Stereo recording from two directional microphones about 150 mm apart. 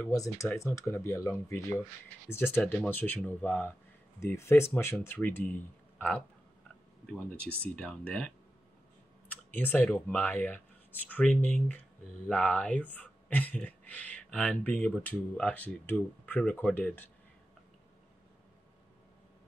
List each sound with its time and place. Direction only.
0.1 s speech: 20° left (ahead or behind)
9.3 s speech: 10° left (ahead or behind)